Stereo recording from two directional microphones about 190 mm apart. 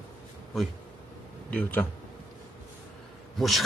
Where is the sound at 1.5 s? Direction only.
5° left (ahead or behind).